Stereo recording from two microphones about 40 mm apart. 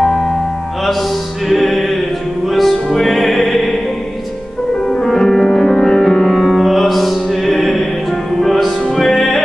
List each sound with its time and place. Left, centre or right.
0.0 s music: centre
1.5 s music: centre
4.8 s music: centre